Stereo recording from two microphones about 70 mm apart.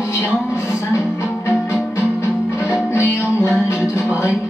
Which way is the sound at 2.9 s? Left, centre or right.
Left.